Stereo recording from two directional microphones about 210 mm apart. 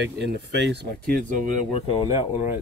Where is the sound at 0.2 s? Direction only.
55° right (ahead or behind).